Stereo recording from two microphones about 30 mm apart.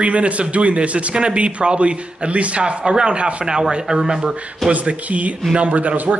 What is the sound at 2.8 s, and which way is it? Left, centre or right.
A man's voice, right.